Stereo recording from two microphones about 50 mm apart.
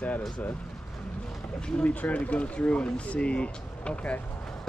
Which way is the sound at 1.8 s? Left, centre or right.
Left.